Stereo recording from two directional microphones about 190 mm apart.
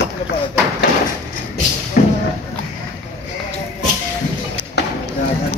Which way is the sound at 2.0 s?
45° left (ahead or behind).